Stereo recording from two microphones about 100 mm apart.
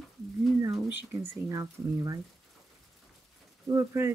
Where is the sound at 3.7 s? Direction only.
30° right (ahead or behind).